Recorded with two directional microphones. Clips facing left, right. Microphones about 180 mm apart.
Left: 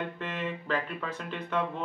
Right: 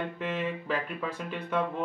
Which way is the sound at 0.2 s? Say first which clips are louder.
Right 3 dB; 10° right (ahead or behind).